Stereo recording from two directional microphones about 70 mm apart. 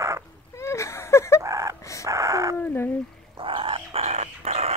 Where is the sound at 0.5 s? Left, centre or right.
Left.